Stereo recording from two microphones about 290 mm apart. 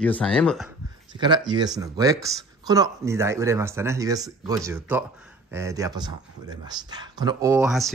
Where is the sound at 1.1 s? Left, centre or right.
Centre.